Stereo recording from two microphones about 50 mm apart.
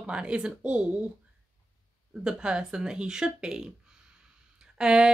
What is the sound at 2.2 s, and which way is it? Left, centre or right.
Speech, centre.